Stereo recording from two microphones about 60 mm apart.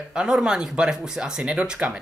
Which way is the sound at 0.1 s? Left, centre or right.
Centre.